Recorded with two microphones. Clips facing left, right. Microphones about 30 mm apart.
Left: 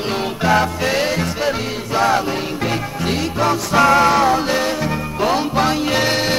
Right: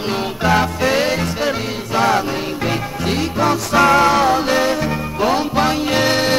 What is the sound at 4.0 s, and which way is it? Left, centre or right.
Music, right.